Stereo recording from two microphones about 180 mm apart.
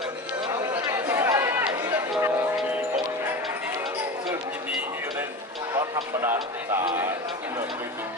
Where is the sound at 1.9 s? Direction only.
15° right (ahead or behind).